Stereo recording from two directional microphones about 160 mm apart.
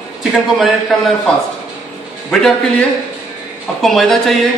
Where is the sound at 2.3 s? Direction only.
5° left (ahead or behind).